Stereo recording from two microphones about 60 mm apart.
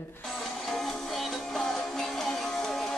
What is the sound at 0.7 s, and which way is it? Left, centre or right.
Music, centre.